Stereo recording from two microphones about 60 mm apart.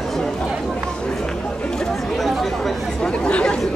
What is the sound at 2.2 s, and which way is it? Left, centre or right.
Chatter, centre.